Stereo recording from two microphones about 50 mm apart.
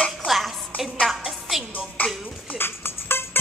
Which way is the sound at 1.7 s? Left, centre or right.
Left.